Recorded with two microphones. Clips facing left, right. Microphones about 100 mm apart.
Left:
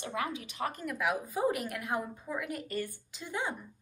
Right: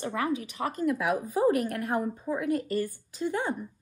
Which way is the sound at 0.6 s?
35° right (ahead or behind).